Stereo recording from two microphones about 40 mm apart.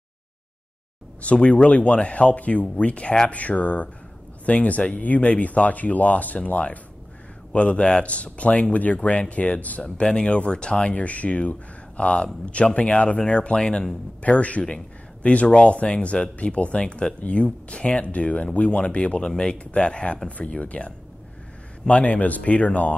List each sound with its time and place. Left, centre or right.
1.2 s speech: left
9.9 s speech: left
14.2 s speech: left